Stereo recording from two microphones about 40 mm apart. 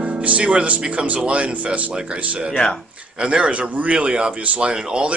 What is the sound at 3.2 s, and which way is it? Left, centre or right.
Speech, right.